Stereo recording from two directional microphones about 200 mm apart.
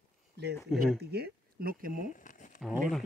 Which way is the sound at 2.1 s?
40° left (ahead or behind).